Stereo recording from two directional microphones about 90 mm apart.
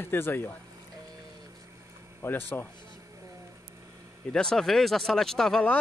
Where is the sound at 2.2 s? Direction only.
25° left (ahead or behind).